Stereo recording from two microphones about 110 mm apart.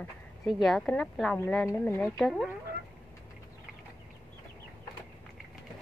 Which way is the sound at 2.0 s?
5° left (ahead or behind).